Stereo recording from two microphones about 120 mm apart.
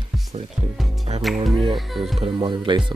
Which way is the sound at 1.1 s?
60° right (ahead or behind).